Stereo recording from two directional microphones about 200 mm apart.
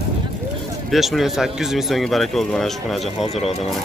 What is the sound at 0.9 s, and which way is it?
Speech, centre (ahead or behind).